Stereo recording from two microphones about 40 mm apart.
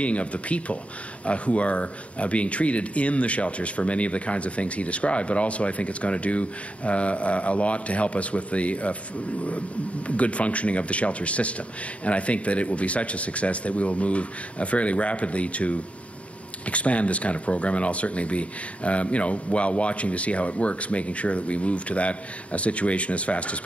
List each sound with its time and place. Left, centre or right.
0.0 s speech: left